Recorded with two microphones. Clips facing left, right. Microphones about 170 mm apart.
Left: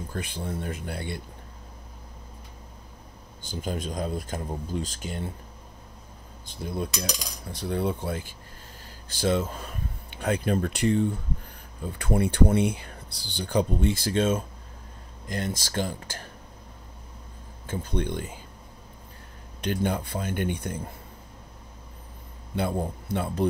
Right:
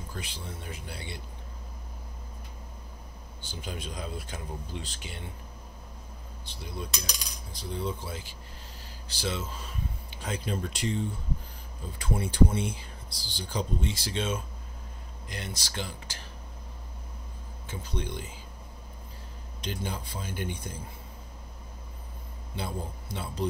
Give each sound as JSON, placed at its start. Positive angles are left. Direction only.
{"t": 0.1, "sound": "speech", "side_deg": 55}
{"t": 3.4, "sound": "speech", "side_deg": 45}
{"t": 6.4, "sound": "speech", "side_deg": 50}
{"t": 17.6, "sound": "speech", "side_deg": 55}
{"t": 19.6, "sound": "speech", "side_deg": 60}
{"t": 22.6, "sound": "speech", "side_deg": 55}